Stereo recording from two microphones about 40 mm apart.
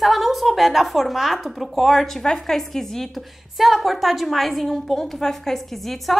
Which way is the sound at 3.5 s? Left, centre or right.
Centre.